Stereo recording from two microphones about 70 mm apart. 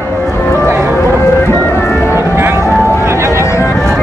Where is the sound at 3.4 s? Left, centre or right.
Left.